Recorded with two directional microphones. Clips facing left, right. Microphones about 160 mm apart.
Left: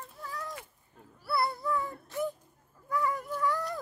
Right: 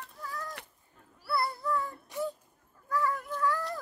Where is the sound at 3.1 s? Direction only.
5° left (ahead or behind).